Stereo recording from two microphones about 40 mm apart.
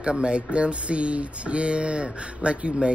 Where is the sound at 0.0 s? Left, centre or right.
Right.